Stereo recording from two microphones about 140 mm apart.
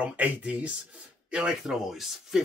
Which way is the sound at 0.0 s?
10° right (ahead or behind).